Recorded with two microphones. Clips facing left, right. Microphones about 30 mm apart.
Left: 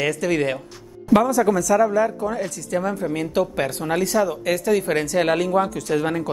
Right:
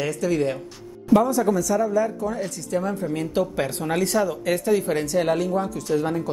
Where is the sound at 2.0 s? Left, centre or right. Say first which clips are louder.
Left 2 dB; left.